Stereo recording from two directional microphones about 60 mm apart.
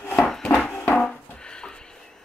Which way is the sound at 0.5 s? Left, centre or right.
Centre.